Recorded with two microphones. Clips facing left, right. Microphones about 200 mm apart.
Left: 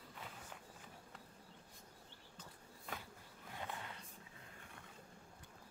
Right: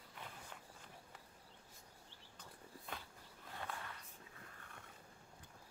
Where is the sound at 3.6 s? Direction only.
20° left (ahead or behind).